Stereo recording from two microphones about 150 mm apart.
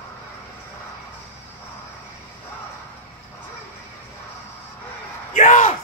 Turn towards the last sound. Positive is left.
turn(degrees=55)  # may be behind; listen again after turning